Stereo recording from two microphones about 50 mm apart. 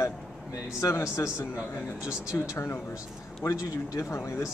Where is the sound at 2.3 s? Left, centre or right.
Left.